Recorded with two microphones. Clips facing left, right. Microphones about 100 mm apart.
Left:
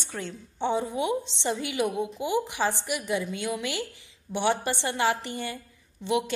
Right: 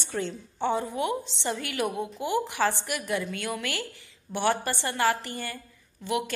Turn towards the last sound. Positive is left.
turn(degrees=20)  # may be behind; listen again after turning